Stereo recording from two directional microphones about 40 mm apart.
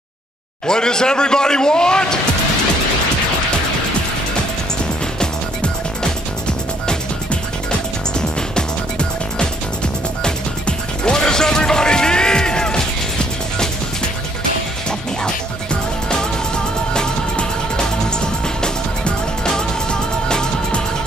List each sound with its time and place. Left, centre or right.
0.7 s a man's voice: centre
8.2 s music: centre
11.1 s music: centre
14.9 s music: left